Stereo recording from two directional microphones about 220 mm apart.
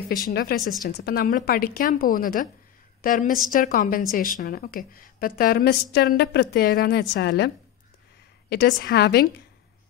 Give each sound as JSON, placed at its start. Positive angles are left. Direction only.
{"t": 0.1, "sound": "a woman's voice", "side_deg": 45}